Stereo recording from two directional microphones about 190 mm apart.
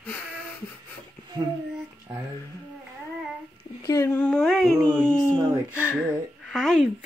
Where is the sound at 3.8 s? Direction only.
15° left (ahead or behind); by 4.7 s centre (ahead or behind).